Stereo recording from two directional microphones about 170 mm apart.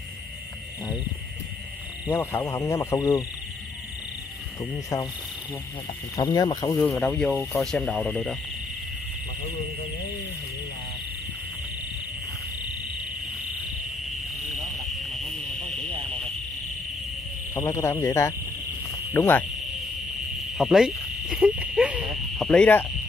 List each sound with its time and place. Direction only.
2.0 s speech: 15° left (ahead or behind)
6.1 s speech: 20° left (ahead or behind)
6.9 s speech: 5° left (ahead or behind)
17.6 s speech: 15° left (ahead or behind)
20.5 s insect: centre (ahead or behind)